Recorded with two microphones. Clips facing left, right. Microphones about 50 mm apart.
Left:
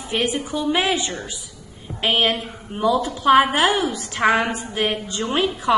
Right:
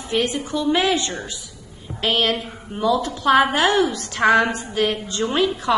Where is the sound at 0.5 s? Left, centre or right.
Centre.